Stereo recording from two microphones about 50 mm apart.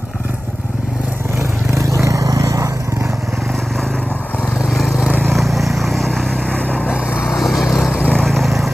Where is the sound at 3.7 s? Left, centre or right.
Centre.